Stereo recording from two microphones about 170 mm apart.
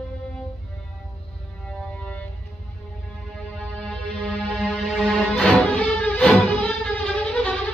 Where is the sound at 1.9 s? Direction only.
10° left (ahead or behind).